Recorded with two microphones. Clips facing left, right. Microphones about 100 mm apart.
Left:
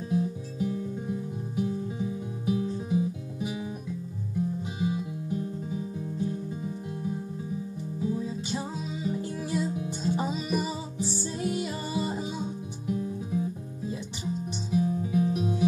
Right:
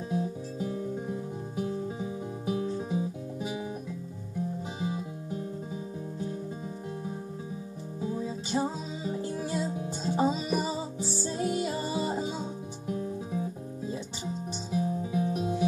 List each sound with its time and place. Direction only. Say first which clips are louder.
0.1 s music: left 3 dB; 30° right (ahead or behind)
4.7 s music: left 3 dB; 30° right (ahead or behind)
8.0 s music: left 2 dB; 30° right (ahead or behind)
14.7 s music: left 3 dB; 30° right (ahead or behind)